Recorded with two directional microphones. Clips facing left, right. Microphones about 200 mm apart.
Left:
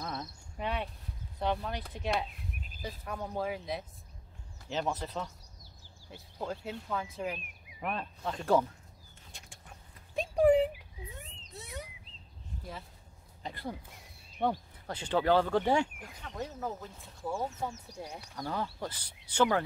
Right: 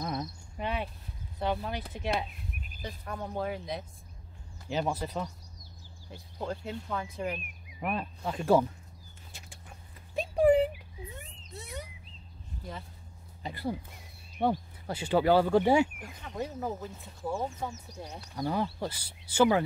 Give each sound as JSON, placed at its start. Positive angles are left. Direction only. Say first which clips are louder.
{"t": 0.0, "sound": "cricket", "louder": "right 5 dB", "side_deg": -15}
{"t": 0.6, "sound": "speech", "louder": "right 1 dB", "side_deg": 0}
{"t": 4.6, "sound": "speech", "louder": "right 3 dB", "side_deg": -10}
{"t": 6.1, "sound": "speech", "louder": "right 2 dB", "side_deg": 5}
{"t": 9.3, "sound": "bird", "louder": "right 2 dB", "side_deg": -5}
{"t": 10.1, "sound": "a sound", "louder": "right 1 dB", "side_deg": 0}
{"t": 13.4, "sound": "speech", "louder": "right 5 dB", "side_deg": -5}
{"t": 16.8, "sound": "speech", "louder": "right 3 dB", "side_deg": 0}
{"t": 17.9, "sound": "speech", "louder": "even", "side_deg": 10}
{"t": 18.3, "sound": "speech", "louder": "right 6 dB", "side_deg": -15}